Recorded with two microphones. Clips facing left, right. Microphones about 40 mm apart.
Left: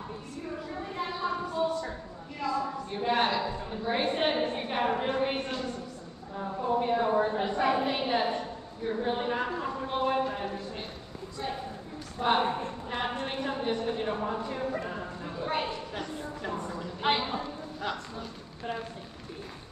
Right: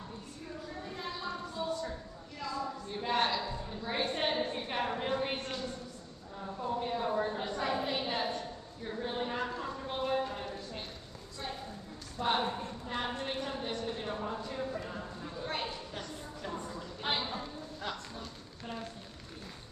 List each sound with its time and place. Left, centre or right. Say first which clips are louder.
0.9 s a sound: left 8 dB; left
2.4 s a woman's voice: left 6 dB; left
3.0 s a woman's voice: left 4 dB; centre
6.6 s a woman's voice: left 7 dB; left
12.2 s a woman's voice: left 5 dB; left
14.8 s a sound: left 5 dB; left
15.4 s a woman's voice: left 7 dB; centre
16.6 s a sound: left 6 dB; left
17.0 s a woman's voice: left 7 dB; left
17.4 s clip-clop: left 5 dB; centre